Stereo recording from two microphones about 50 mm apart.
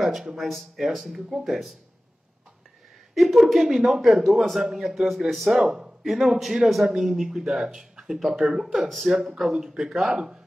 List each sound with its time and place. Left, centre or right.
0.0 s speech: centre
3.2 s speech: centre
5.6 s speech: centre